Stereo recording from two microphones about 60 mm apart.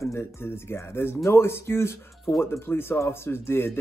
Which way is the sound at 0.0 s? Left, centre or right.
Left.